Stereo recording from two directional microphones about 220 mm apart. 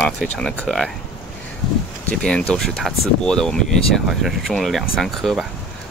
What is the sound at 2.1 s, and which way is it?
Speech, 5° left (ahead or behind).